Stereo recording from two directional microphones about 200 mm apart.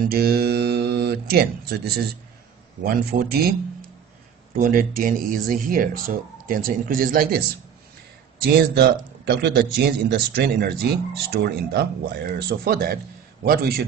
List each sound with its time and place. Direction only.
0.0 s speech: 50° right (ahead or behind)
4.6 s speech: 45° right (ahead or behind)
8.7 s speech: 55° right (ahead or behind)